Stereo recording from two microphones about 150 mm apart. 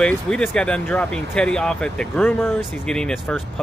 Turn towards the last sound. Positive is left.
turn(degrees=5)  # may be behind; listen again after turning